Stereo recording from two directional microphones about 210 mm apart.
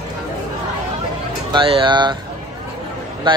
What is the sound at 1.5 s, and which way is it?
Speech, 20° right (ahead or behind).